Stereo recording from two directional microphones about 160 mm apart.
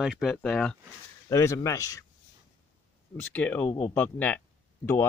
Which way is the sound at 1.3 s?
20° left (ahead or behind).